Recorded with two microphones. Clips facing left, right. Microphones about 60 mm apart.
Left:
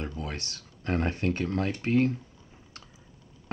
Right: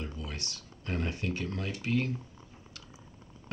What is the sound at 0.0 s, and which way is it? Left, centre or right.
Speech, left.